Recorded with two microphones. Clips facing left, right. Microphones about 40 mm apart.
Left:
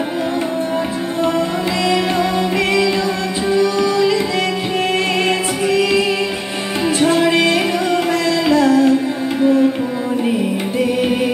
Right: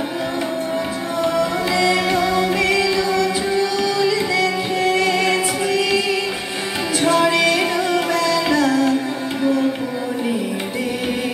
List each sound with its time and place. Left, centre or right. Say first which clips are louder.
2.6 s music: left 2 dB; left
5.7 s music: left 5 dB; left